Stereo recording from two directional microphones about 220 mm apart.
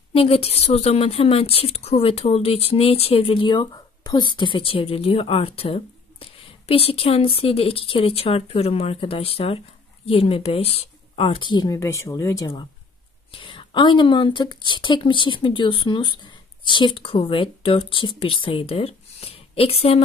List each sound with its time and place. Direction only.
0.1 s a woman's voice: 25° left (ahead or behind)